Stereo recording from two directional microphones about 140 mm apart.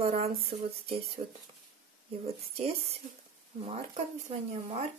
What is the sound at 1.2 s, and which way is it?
Speech, 55° right (ahead or behind).